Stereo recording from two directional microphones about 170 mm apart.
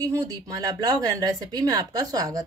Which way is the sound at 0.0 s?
20° right (ahead or behind).